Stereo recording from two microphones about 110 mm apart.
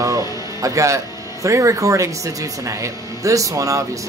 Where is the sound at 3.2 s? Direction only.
30° right (ahead or behind).